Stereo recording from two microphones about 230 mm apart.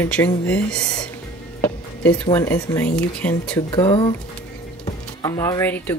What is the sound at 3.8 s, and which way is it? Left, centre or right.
Speech, centre.